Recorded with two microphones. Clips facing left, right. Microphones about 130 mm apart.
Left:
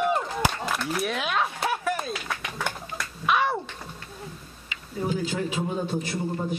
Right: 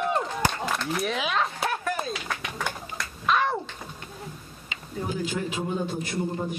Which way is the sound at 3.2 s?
5° left (ahead or behind).